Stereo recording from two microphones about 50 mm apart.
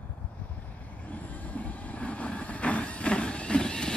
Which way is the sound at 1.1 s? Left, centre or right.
Left.